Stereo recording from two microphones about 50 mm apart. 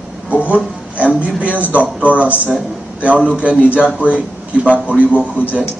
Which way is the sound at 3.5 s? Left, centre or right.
Left.